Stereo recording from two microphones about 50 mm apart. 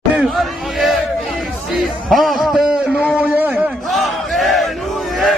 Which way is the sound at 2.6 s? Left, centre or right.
Centre.